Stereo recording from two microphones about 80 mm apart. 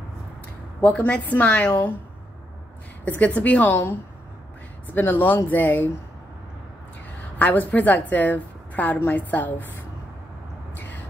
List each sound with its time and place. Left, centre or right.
0.7 s a woman's voice: centre
3.1 s a woman's voice: centre
4.9 s a woman's voice: left
7.3 s a woman's voice: left
10.7 s a sound: left